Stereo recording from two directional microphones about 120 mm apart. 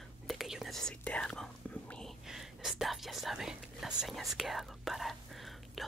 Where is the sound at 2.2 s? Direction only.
5° right (ahead or behind).